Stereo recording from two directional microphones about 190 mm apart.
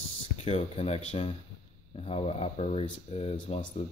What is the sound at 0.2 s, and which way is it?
Speech, 35° left (ahead or behind).